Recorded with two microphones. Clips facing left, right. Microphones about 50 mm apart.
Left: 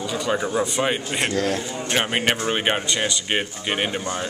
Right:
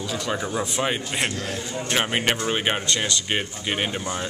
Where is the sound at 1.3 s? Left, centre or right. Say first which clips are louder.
Left 8 dB; left.